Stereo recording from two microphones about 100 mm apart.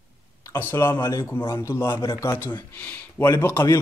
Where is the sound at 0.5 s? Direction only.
25° left (ahead or behind).